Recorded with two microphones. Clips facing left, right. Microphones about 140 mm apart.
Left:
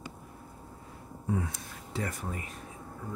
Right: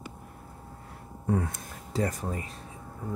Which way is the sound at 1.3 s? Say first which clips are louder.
Right 4 dB; 60° right (ahead or behind).